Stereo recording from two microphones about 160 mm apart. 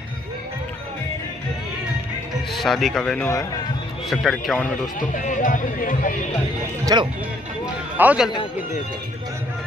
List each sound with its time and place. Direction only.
2.5 s speech: centre (ahead or behind)
5.1 s speech: 55° left (ahead or behind)
6.9 s speech: 25° right (ahead or behind)
8.0 s a man's voice: 10° right (ahead or behind)